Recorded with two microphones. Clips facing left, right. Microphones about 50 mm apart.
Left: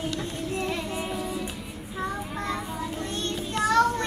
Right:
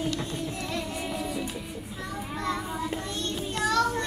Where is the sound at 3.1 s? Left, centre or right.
Left.